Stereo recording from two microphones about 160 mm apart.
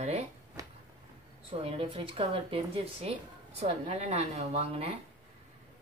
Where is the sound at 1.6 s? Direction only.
35° right (ahead or behind).